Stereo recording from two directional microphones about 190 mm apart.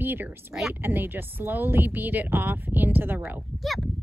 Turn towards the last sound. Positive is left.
turn(degrees=0)  # may be behind; listen again after turning